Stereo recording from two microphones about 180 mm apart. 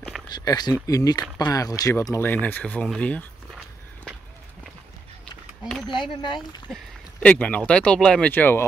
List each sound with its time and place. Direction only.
0.3 s speech: 25° left (ahead or behind); by 3.3 s 5° left (ahead or behind)
5.6 s speech: centre (ahead or behind)